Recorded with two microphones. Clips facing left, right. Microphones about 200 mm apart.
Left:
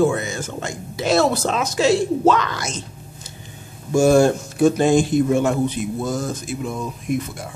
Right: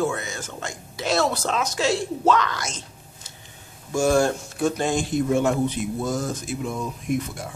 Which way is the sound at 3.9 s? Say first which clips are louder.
Left 6 dB; 25° left (ahead or behind).